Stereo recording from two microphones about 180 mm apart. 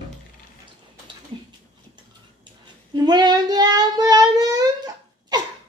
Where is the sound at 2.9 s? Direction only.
25° right (ahead or behind).